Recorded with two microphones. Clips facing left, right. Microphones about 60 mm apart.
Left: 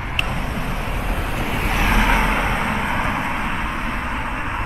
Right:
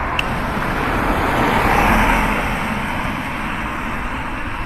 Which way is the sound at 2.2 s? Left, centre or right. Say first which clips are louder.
Right 1 dB; centre.